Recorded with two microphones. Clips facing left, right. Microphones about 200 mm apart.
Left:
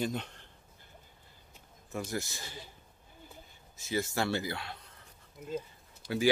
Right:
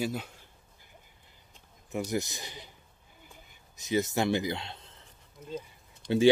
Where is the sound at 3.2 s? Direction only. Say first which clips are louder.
Left 3 dB; 20° right (ahead or behind).